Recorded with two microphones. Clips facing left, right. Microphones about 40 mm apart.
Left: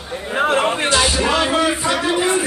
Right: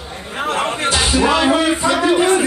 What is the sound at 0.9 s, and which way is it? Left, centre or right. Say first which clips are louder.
Music: right 5 dB; centre.